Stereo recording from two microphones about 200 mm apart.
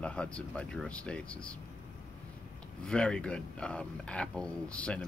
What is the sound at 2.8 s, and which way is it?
Speech, 5° left (ahead or behind).